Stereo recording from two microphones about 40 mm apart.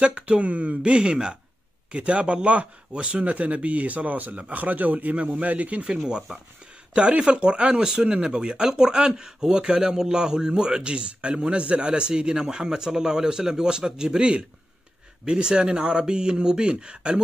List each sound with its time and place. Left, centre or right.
0.0 s speech: right
6.9 s speech: right